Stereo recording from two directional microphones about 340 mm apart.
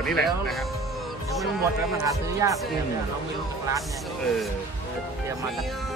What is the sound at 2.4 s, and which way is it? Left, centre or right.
Speech, centre.